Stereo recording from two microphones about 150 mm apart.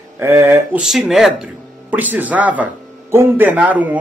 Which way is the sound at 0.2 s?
20° right (ahead or behind).